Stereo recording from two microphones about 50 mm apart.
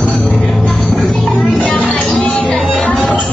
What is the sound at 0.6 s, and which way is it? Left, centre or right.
Music, left.